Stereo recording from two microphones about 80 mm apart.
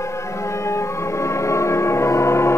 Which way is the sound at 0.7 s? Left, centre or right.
Left.